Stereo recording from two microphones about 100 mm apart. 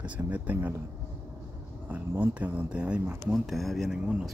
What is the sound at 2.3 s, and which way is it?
Speech, 15° right (ahead or behind).